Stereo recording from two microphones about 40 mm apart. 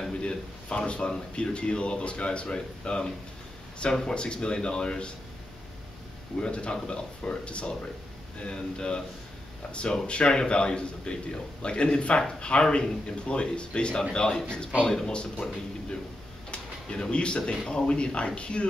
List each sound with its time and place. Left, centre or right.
0.1 s a man's voice: left
4.1 s speech: left
6.4 s speech: left